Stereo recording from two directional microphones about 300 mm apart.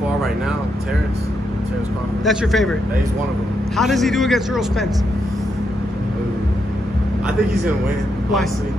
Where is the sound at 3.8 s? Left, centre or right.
Centre.